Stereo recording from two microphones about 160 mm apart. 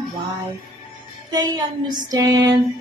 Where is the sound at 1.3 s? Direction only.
25° right (ahead or behind).